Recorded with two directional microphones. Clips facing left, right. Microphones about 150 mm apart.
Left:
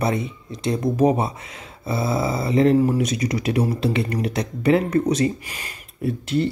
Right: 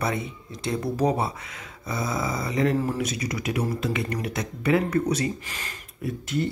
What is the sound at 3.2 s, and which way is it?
Speech, 30° left (ahead or behind).